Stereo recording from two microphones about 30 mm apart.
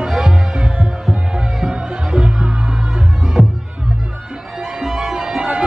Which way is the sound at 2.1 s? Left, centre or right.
Right.